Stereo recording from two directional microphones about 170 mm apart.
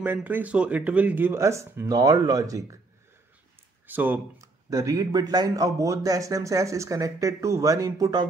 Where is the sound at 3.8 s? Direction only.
10° right (ahead or behind).